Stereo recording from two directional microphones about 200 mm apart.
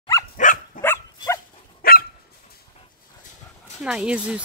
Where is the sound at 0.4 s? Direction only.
40° left (ahead or behind).